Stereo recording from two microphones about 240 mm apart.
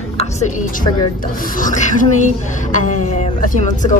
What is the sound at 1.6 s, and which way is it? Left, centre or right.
A woman's voice, left.